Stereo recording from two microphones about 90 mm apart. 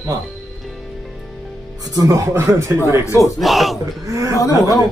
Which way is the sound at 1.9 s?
40° right (ahead or behind).